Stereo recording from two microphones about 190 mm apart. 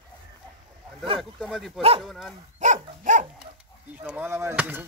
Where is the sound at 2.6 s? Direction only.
40° right (ahead or behind).